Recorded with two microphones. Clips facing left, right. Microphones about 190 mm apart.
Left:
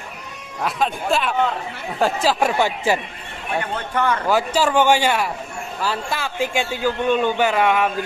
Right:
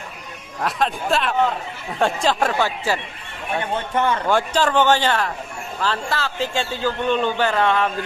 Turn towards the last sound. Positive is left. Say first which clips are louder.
# left 1 dB
turn(degrees=10)  # may be behind; listen again after turning